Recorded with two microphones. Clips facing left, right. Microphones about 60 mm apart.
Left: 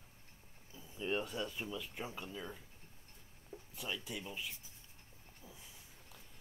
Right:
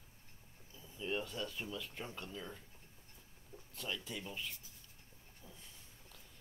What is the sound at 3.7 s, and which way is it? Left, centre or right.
Speech, centre.